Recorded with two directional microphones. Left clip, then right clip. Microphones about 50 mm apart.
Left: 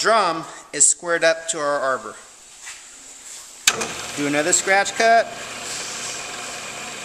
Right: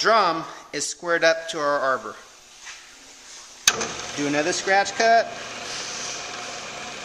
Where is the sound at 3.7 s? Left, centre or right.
Left.